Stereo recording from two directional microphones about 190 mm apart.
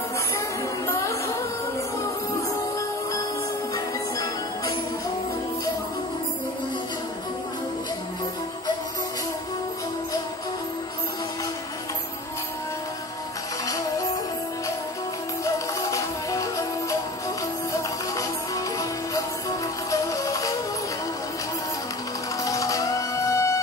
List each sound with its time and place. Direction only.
0.8 s music: 15° left (ahead or behind)
3.7 s music: 20° left (ahead or behind)
15.4 s music: 15° left (ahead or behind)
18.1 s music: 20° left (ahead or behind)
22.4 s music: 15° left (ahead or behind)